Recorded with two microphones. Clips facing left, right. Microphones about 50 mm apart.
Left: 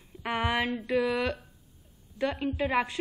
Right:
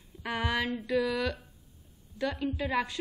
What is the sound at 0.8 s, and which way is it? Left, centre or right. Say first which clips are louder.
A woman's voice: left 2 dB; left.